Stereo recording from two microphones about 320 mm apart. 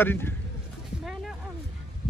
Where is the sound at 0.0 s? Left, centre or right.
Centre.